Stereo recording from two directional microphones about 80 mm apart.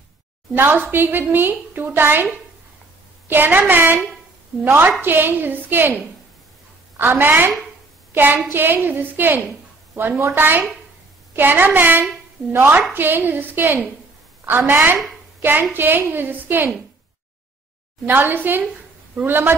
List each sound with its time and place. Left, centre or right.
0.6 s a woman's voice: right
3.3 s a woman's voice: right
18.0 s a woman's voice: right